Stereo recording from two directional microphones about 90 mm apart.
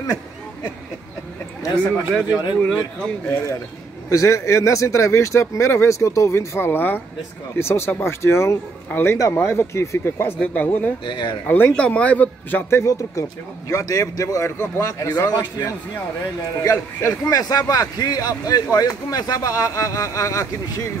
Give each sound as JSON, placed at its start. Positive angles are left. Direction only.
{"t": 1.8, "sound": "speech", "side_deg": 10}
{"t": 4.1, "sound": "a man's voice", "side_deg": 35}
{"t": 10.4, "sound": "speech", "side_deg": 15}
{"t": 11.1, "sound": "speech", "side_deg": 60}
{"t": 11.4, "sound": "a man's voice", "side_deg": 20}